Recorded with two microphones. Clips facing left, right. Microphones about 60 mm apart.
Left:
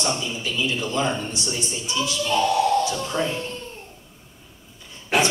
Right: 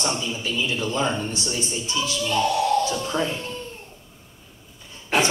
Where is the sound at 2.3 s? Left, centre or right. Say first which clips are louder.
Left 2 dB; left.